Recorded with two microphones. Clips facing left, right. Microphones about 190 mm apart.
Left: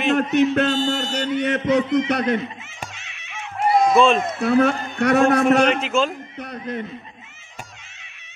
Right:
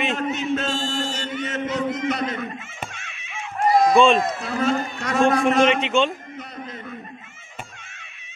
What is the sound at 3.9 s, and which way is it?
Speech, centre (ahead or behind).